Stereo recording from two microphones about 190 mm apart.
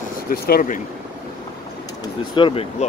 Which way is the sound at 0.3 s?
50° left (ahead or behind).